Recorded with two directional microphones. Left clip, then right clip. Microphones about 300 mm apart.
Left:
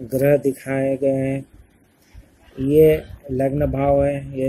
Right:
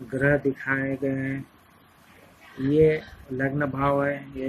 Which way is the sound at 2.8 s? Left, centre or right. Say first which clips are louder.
Left 6 dB; left.